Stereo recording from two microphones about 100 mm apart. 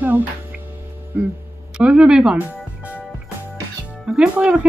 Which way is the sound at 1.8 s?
10° right (ahead or behind).